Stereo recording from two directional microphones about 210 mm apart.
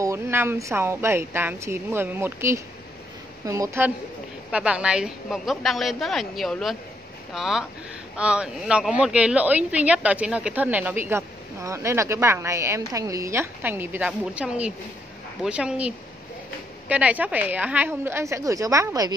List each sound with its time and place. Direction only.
0.0 s a woman's voice: 10° right (ahead or behind)
16.9 s speech: 5° right (ahead or behind)